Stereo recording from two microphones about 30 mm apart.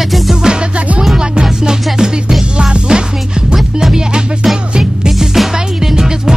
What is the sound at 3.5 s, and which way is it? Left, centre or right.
Music, centre.